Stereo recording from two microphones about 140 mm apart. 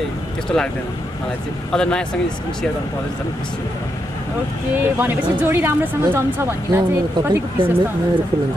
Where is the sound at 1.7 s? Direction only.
5° left (ahead or behind).